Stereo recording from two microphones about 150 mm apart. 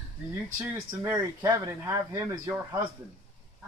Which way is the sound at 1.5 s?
20° right (ahead or behind).